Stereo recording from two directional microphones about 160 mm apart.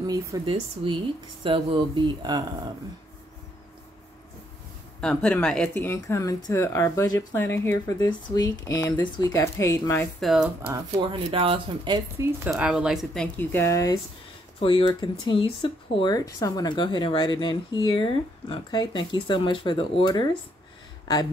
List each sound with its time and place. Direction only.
0.0 s speech: 20° right (ahead or behind)
5.0 s speech: 5° left (ahead or behind)
5.8 s speech: 15° left (ahead or behind)
10.2 s speech: 5° right (ahead or behind)
10.6 s speech: 30° right (ahead or behind)
12.4 s speech: 5° right (ahead or behind); by 13.9 s 20° left (ahead or behind)
14.6 s speech: 35° left (ahead or behind)